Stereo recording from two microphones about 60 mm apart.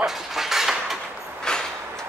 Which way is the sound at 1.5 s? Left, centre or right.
Centre.